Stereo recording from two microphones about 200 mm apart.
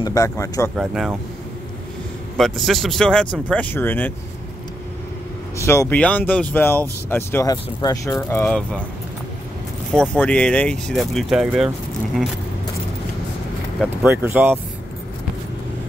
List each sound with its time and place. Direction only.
0.0 s speech: 15° left (ahead or behind)
0.7 s speech: centre (ahead or behind)
2.3 s speech: centre (ahead or behind)
5.6 s speech: 15° left (ahead or behind)
9.9 s speech: 5° left (ahead or behind)
14.0 s speech: 10° right (ahead or behind)